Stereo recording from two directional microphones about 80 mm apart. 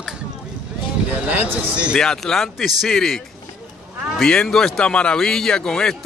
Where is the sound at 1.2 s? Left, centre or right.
Centre.